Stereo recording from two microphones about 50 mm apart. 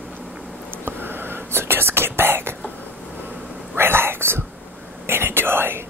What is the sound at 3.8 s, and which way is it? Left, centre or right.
Whispering, right.